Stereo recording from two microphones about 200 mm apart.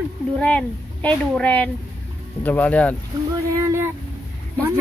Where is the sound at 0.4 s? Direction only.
5° left (ahead or behind).